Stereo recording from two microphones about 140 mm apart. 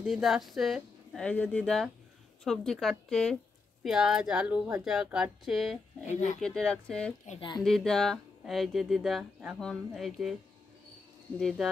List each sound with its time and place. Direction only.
0.0 s speech: centre (ahead or behind)
6.0 s speech: 55° left (ahead or behind)
6.4 s speech: 5° left (ahead or behind)
7.3 s speech: 35° left (ahead or behind)
7.6 s speech: 5° left (ahead or behind)
11.3 s speech: centre (ahead or behind)